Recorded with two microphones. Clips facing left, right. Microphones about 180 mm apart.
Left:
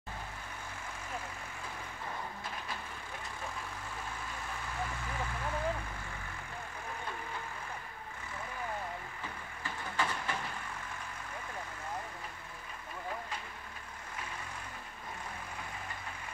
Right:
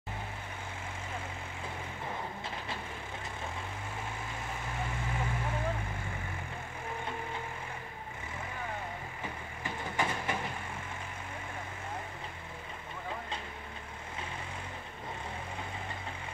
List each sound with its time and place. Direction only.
9.6 s vehicle: 20° right (ahead or behind)